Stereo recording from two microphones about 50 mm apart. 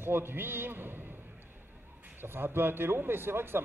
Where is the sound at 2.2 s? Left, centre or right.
Right.